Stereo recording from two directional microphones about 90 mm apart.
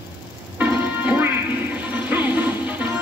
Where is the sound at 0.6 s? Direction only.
20° right (ahead or behind).